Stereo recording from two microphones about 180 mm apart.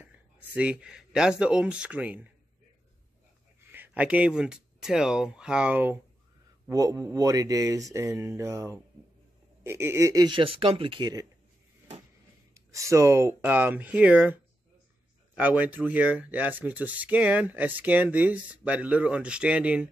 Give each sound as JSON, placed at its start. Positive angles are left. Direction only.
{"t": 0.0, "sound": "speech", "side_deg": -5}
{"t": 3.6, "sound": "speech", "side_deg": -10}
{"t": 12.5, "sound": "speech", "side_deg": -15}